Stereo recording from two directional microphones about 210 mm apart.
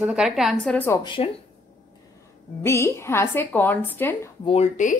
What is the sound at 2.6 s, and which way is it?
Speech, 15° left (ahead or behind).